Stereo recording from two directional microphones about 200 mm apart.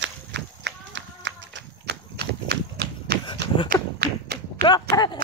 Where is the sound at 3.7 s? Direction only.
50° right (ahead or behind).